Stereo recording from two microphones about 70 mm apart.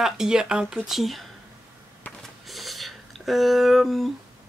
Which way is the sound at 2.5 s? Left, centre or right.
Centre.